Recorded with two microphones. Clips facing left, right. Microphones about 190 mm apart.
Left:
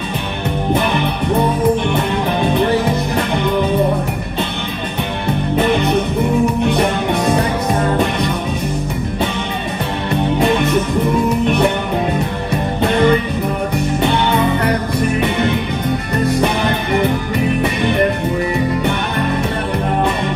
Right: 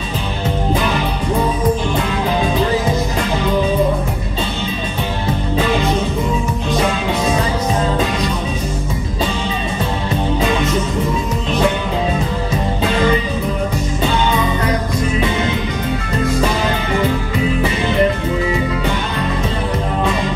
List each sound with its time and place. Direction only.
2.5 s music: 60° left (ahead or behind)
5.6 s music: 60° left (ahead or behind)
10.4 s music: 60° left (ahead or behind)
12.8 s music: 60° left (ahead or behind)